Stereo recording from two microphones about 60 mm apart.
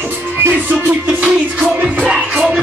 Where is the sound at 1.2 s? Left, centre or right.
Right.